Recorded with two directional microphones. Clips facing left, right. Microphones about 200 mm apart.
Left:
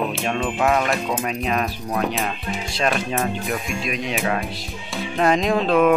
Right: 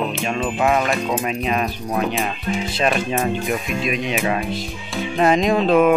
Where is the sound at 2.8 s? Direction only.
5° right (ahead or behind).